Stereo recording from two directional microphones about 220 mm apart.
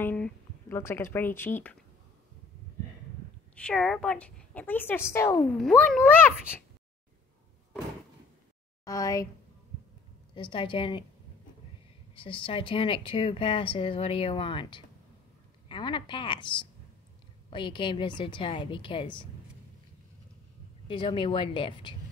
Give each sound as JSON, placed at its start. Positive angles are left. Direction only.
{"t": 0.0, "sound": "speech", "side_deg": 10}
{"t": 3.5, "sound": "a woman's voice", "side_deg": 5}
{"t": 8.8, "sound": "a woman's voice", "side_deg": 15}
{"t": 10.3, "sound": "speech", "side_deg": 20}
{"t": 12.2, "sound": "speech", "side_deg": 25}
{"t": 20.9, "sound": "speech", "side_deg": 20}